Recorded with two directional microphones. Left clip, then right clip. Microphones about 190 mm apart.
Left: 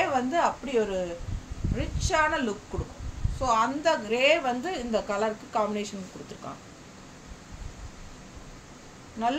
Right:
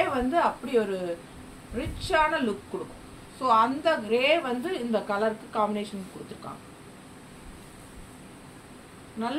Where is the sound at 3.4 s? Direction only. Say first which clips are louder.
Right 2 dB; 30° left (ahead or behind).